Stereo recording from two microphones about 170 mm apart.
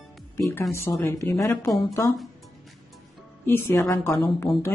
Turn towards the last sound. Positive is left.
turn(degrees=15)  # may be behind; listen again after turning